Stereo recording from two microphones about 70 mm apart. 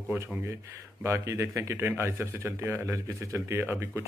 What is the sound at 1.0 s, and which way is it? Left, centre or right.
A man's voice, right.